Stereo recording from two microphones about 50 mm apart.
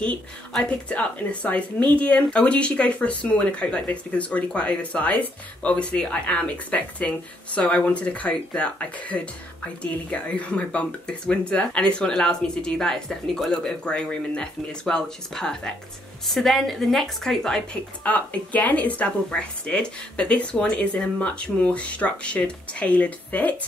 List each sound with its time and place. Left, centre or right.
0.7 s speech: left; by 13.5 s centre
13.5 s a woman's voice: centre
18.0 s speech: left